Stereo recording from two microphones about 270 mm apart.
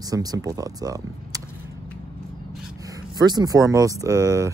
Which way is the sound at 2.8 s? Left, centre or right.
Centre.